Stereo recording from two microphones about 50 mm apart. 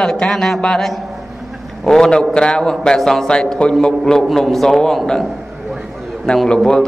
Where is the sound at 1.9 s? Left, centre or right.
Centre.